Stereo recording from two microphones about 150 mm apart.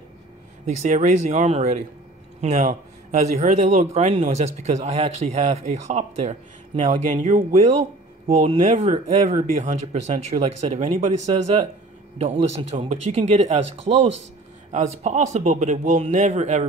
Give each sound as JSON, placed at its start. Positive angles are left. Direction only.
{"t": 0.7, "sound": "a man's voice", "side_deg": -50}
{"t": 14.7, "sound": "a man's voice", "side_deg": -55}